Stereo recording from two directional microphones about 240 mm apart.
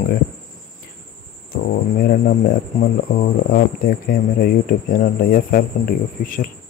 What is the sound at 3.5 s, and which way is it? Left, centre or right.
Speech, left.